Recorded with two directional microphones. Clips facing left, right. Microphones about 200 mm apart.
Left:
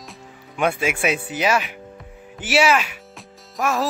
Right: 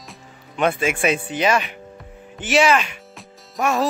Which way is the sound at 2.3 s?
5° left (ahead or behind).